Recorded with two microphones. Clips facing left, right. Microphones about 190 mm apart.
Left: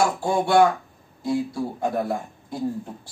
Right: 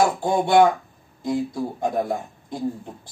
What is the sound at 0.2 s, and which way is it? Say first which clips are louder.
Speech: even; 20° right (ahead or behind).